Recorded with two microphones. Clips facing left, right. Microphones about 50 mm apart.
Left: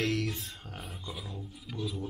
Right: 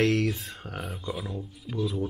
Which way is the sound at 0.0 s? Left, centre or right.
Right.